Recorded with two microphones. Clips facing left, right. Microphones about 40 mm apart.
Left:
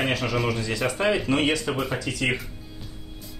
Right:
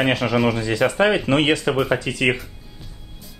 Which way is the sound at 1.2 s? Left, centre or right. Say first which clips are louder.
Right 5 dB; right.